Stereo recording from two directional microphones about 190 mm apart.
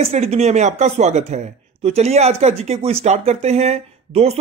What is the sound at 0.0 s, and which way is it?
Speech, 35° right (ahead or behind).